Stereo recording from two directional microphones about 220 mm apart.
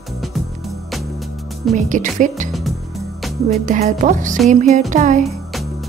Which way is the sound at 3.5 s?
30° right (ahead or behind).